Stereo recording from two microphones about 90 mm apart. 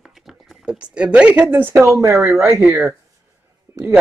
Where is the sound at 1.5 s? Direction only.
25° right (ahead or behind).